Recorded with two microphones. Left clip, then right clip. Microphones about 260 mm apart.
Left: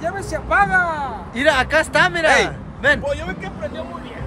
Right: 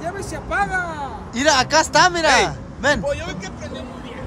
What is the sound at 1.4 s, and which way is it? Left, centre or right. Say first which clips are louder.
A man's voice: even; centre.